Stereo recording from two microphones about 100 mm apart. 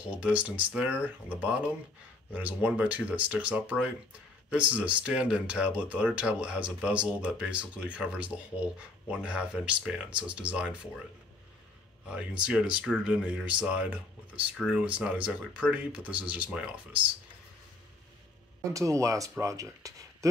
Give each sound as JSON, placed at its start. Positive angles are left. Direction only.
{"t": 0.0, "sound": "speech", "side_deg": -10}
{"t": 12.1, "sound": "speech", "side_deg": -10}
{"t": 18.6, "sound": "speech", "side_deg": -35}